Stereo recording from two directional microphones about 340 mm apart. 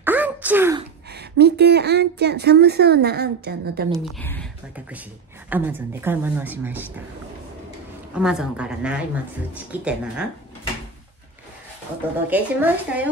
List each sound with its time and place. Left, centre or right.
0.0 s throat clearing: centre
1.4 s speech: right
3.9 s a woman's voice: centre
8.1 s speech: centre
12.3 s speech: centre